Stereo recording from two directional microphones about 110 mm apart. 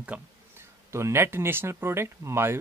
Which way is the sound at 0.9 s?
25° right (ahead or behind).